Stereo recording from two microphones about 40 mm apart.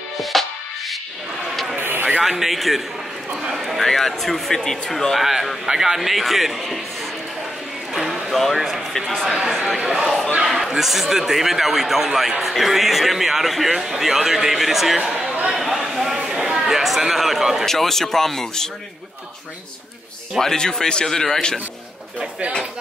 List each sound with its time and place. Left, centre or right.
0.2 s music: centre
1.8 s a sound: right
2.2 s a man's voice: centre
3.8 s a man's voice: centre
7.9 s music: centre
8.9 s speech: centre
9.3 s speech: centre
10.4 s a sound: centre
10.7 s a man's voice: centre
17.6 s speech: centre
20.3 s speech: centre